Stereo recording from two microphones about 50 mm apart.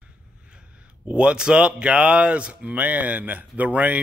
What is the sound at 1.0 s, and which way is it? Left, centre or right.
Speech, right.